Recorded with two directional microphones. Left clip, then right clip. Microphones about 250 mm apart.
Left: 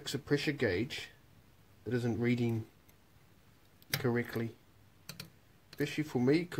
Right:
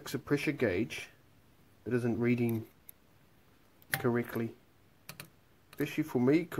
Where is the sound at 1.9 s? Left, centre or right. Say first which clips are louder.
Right 2 dB; right.